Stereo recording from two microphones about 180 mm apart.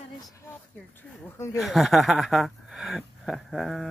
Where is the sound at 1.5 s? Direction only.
Centre (ahead or behind).